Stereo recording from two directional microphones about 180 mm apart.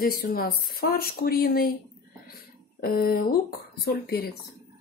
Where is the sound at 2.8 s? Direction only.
55° left (ahead or behind).